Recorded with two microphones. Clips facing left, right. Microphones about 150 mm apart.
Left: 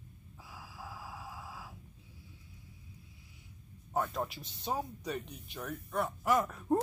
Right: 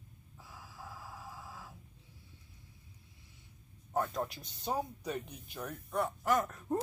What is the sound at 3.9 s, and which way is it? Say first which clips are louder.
Speech: even; centre (ahead or behind).